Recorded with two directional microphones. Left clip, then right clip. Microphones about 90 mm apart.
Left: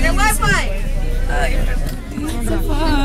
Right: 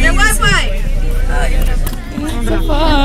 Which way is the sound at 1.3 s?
15° left (ahead or behind).